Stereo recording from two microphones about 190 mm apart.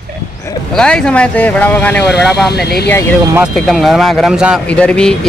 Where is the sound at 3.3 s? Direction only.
Centre (ahead or behind).